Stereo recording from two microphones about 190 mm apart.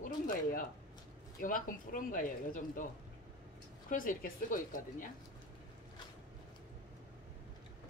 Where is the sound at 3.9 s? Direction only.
45° left (ahead or behind).